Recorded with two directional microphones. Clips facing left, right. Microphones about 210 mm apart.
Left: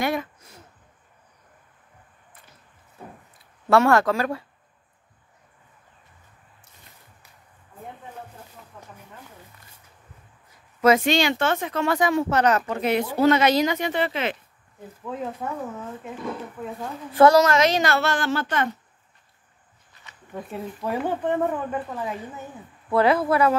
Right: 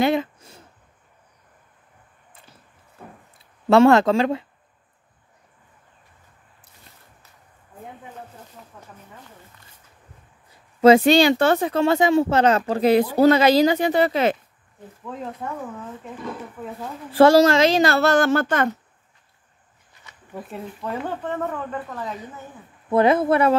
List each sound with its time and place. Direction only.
0.0 s a sound: 25° right (ahead or behind)
3.6 s speech: 25° right (ahead or behind)
10.8 s speech: 30° right (ahead or behind)
15.0 s speech: 5° left (ahead or behind)
17.1 s speech: 30° right (ahead or behind); by 18.7 s 45° right (ahead or behind)
20.3 s speech: centre (ahead or behind)
20.8 s speech: 10° left (ahead or behind)
22.8 s speech: 20° right (ahead or behind)